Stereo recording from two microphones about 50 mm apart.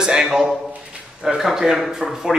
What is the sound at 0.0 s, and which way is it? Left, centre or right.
A man's voice, centre.